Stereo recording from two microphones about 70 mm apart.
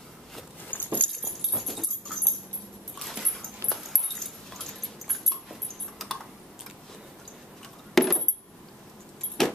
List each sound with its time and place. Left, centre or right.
0.7 s a sound: left
1.2 s dog: centre
7.9 s coin: centre
9.4 s keys jangling: centre